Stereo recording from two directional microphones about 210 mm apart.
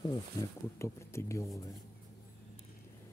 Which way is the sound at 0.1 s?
15° left (ahead or behind).